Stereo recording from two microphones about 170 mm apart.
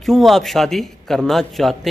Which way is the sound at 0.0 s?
Centre (ahead or behind).